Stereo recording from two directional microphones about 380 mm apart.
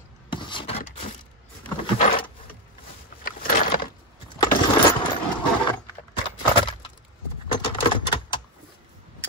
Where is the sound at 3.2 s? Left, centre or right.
Left.